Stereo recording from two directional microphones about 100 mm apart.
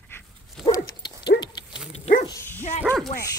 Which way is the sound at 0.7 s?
40° left (ahead or behind).